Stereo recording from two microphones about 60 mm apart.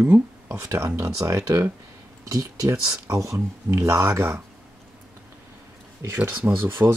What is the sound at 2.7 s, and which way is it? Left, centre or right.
Speech, right.